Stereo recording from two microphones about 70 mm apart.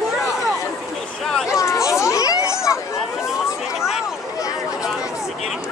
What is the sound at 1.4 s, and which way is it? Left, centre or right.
Chatter, left.